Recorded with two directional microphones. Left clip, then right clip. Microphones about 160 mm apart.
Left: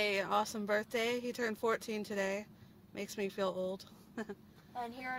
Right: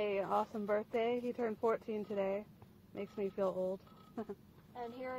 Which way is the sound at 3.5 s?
20° left (ahead or behind).